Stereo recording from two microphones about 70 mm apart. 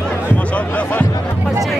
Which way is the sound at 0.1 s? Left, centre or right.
Left.